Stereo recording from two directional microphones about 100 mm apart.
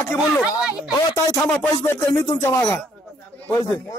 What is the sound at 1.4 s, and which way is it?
Speech, 15° left (ahead or behind).